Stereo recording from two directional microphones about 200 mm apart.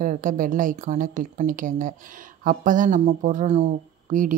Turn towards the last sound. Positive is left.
turn(degrees=-40)  # may be behind; listen again after turning